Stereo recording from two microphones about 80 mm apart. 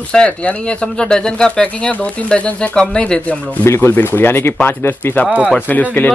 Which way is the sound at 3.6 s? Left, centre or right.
Left.